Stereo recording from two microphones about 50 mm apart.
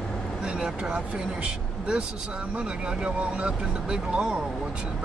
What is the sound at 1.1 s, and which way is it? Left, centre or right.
Speech, right.